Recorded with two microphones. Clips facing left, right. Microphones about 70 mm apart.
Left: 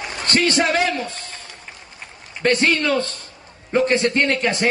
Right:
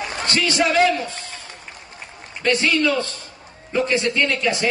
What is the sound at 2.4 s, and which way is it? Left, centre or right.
A man's voice, left.